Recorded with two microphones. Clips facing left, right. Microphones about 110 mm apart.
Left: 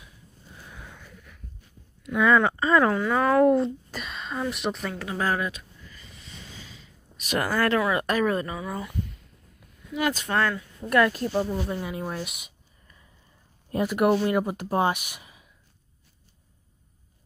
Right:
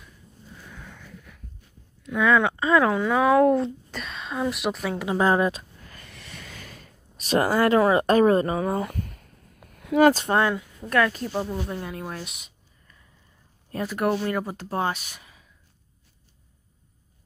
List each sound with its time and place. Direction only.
0.7 s a sound: 10° left (ahead or behind)
2.0 s speech: centre (ahead or behind)
4.9 s speech: 20° right (ahead or behind)
5.8 s snort: 60° right (ahead or behind)
7.2 s speech: 30° right (ahead or behind)
8.5 s a sound: 45° right (ahead or behind)
9.9 s speech: 40° right (ahead or behind)
10.8 s speech: 5° left (ahead or behind)